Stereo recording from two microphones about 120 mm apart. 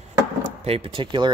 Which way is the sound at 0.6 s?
55° right (ahead or behind).